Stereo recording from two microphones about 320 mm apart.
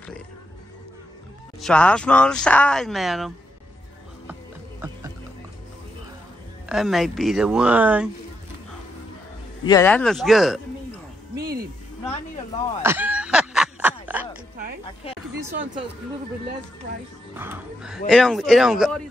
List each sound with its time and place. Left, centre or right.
1.6 s speech: centre
6.7 s speech: centre
9.7 s speech: centre
11.3 s speech: right
12.8 s a sound: centre
17.4 s speech: centre